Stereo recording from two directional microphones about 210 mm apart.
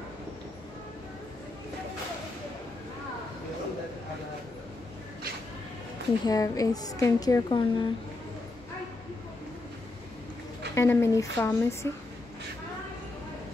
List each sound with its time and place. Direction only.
6.2 s a woman's voice: 15° left (ahead or behind)
10.7 s a woman's voice: 10° left (ahead or behind)